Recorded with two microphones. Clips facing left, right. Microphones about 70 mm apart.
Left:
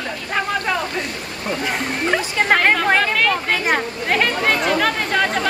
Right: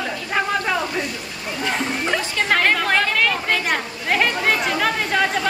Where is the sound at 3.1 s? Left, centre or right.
Centre.